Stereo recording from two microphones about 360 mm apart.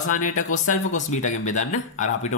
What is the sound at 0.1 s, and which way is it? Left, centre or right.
A man's voice, left.